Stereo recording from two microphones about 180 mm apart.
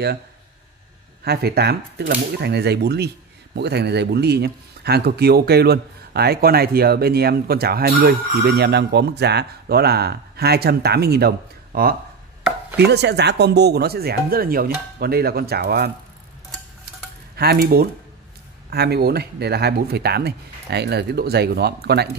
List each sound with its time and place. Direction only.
1.2 s speech: 60° right (ahead or behind)
17.4 s speech: 60° right (ahead or behind)